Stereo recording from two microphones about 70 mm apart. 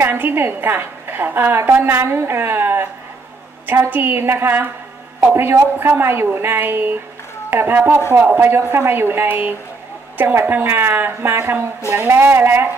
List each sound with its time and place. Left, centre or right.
0.0 s a woman's voice: right